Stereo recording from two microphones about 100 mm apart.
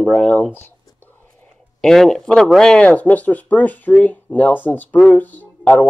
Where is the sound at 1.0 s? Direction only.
20° left (ahead or behind).